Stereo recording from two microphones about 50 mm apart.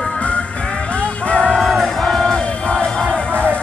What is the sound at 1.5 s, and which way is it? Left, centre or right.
Music, centre.